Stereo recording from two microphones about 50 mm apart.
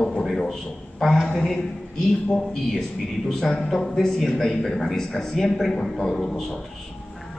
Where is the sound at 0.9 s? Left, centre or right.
Centre.